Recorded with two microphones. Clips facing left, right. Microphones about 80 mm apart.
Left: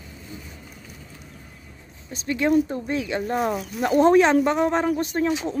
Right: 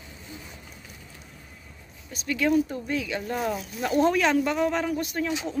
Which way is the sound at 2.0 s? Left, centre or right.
Left.